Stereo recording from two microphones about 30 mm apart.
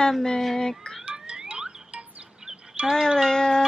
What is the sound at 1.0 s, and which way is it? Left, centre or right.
Alarm, right.